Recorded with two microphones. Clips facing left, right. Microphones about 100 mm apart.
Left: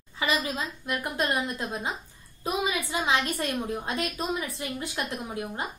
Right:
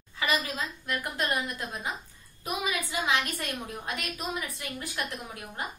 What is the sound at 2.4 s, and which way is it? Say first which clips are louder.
A woman's voice: left 3 dB; 25° left (ahead or behind).